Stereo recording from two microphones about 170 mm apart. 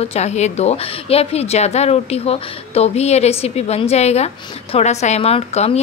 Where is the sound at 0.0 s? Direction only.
40° left (ahead or behind).